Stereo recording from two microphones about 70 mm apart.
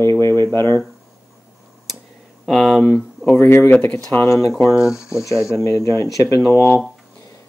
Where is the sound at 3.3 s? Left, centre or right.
Left.